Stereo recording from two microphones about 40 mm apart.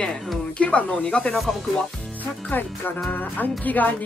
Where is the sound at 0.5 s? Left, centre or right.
Left.